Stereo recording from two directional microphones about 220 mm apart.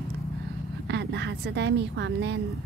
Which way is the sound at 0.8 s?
50° right (ahead or behind).